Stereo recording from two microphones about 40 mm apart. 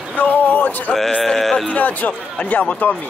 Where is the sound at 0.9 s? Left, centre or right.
Centre.